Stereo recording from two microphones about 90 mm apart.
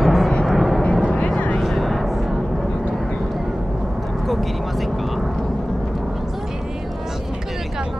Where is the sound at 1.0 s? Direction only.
15° left (ahead or behind).